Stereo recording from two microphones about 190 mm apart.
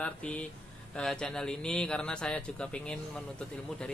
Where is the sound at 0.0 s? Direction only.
5° left (ahead or behind).